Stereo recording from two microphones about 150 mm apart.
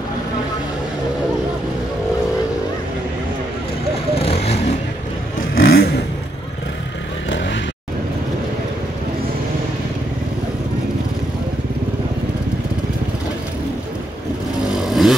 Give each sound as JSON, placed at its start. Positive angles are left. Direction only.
{"t": 4.3, "sound": "vehicle", "side_deg": 45}
{"t": 5.7, "sound": "vehicle", "side_deg": 90}
{"t": 14.8, "sound": "vehicle", "side_deg": 0}